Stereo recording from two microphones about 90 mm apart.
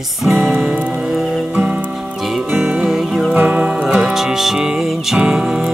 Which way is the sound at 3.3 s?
15° right (ahead or behind).